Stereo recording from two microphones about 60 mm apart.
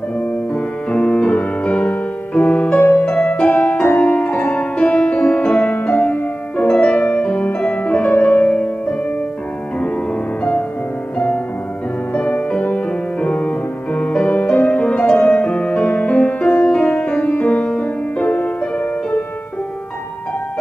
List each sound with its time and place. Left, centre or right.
0.2 s music: centre
2.8 s music: left
3.3 s music: centre
3.8 s music: left
11.1 s music: left